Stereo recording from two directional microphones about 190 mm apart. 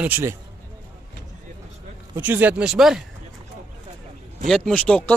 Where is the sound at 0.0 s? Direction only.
10° right (ahead or behind).